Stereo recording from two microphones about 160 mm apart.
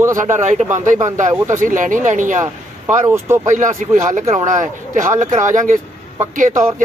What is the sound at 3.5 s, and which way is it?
A man's voice, 55° right (ahead or behind).